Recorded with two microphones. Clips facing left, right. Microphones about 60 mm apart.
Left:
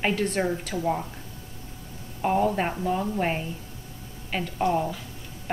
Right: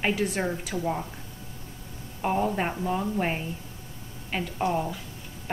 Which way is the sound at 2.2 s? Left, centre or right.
Centre.